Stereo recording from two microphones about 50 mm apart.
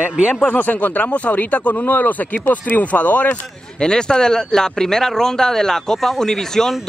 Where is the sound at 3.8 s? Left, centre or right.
Centre.